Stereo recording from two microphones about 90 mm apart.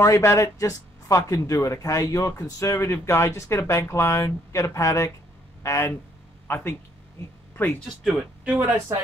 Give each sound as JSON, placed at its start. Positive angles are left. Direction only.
{"t": 0.0, "sound": "speech", "side_deg": 35}
{"t": 8.0, "sound": "speech", "side_deg": -5}